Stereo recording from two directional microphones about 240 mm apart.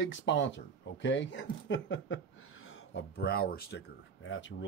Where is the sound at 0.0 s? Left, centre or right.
Left.